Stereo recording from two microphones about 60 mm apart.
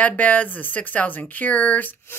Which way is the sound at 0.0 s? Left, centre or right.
Left.